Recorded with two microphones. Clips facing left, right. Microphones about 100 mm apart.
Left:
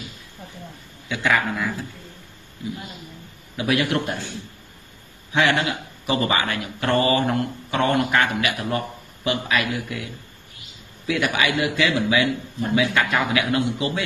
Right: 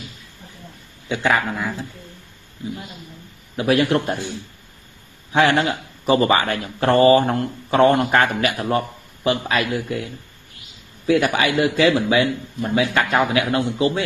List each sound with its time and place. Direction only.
1.0 s speech: 30° right (ahead or behind)
3.5 s speech: 35° right (ahead or behind)
5.3 s speech: 35° right (ahead or behind)
11.1 s speech: 35° right (ahead or behind)